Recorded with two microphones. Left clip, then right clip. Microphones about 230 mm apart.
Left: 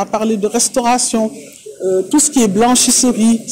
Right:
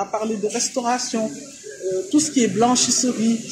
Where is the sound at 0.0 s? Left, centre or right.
Left.